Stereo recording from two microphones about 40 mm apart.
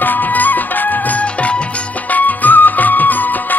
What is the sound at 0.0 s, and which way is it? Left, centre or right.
Music, left.